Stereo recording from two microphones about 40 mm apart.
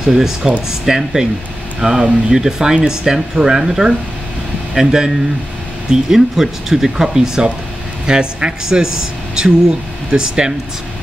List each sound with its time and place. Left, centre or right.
0.0 s speech: centre